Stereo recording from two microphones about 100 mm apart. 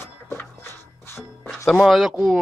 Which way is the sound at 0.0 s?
25° left (ahead or behind).